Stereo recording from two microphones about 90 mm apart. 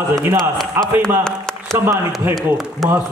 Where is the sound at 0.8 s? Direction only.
25° right (ahead or behind).